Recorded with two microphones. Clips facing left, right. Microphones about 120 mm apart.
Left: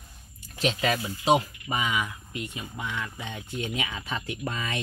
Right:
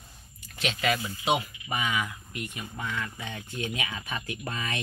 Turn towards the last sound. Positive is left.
turn(degrees=25)  # may be behind; listen again after turning